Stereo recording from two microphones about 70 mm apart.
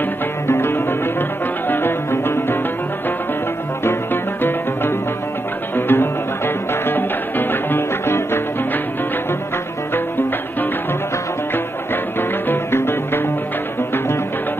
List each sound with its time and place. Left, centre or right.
0.5 s music: left
3.8 s music: left
9.9 s music: left
12.2 s music: left